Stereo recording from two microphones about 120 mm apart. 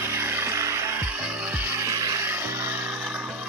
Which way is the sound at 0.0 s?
20° right (ahead or behind).